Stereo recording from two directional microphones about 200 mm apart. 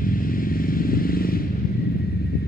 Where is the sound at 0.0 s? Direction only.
45° left (ahead or behind).